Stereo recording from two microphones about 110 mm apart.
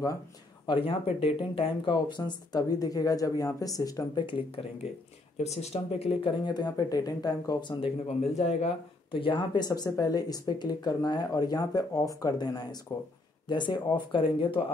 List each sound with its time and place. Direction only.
0.7 s speech: 55° left (ahead or behind); by 4.2 s 35° left (ahead or behind)
4.3 s speech: 50° left (ahead or behind)
5.4 s speech: 75° left (ahead or behind)
6.4 s speech: 40° left (ahead or behind)
7.8 s speech: 75° left (ahead or behind)
9.1 s speech: 50° left (ahead or behind)
12.9 s speech: 55° left (ahead or behind)